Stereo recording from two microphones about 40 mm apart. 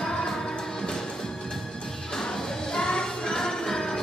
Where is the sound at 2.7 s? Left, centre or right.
Centre.